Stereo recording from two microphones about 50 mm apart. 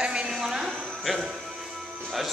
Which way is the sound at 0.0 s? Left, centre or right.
Centre.